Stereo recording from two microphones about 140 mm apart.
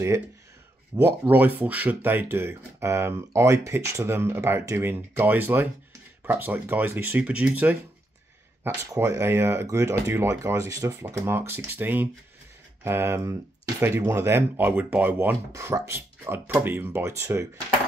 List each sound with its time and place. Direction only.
0.9 s speech: 15° right (ahead or behind)
8.6 s speech: 20° right (ahead or behind)